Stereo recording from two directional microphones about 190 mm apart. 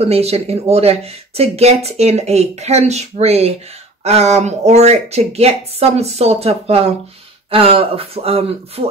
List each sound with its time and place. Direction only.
0.0 s speech: 30° right (ahead or behind)